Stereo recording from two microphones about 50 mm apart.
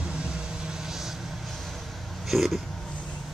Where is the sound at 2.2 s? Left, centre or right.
Centre.